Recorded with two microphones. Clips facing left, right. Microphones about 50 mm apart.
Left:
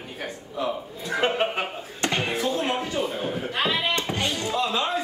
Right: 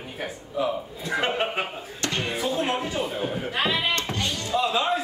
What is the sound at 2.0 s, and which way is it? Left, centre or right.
Music, left.